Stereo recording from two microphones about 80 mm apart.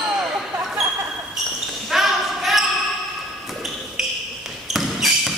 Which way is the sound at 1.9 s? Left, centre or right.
Centre.